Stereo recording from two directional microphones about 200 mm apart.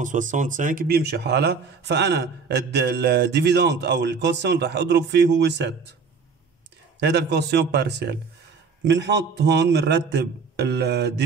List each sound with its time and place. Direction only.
0.0 s speech: 40° right (ahead or behind); by 5.8 s 60° right (ahead or behind)
7.0 s speech: 55° right (ahead or behind)